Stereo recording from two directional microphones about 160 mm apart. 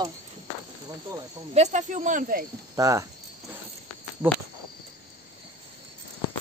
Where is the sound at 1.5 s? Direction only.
45° right (ahead or behind).